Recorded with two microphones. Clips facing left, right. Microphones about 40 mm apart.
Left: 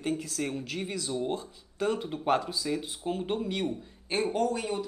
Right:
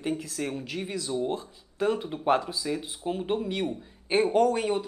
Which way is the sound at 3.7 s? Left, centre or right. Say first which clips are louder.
Right 4 dB; right.